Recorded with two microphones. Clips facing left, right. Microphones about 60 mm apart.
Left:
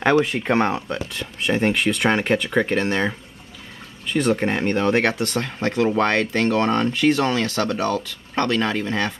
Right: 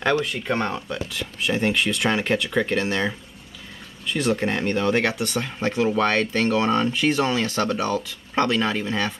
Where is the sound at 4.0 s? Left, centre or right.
Centre.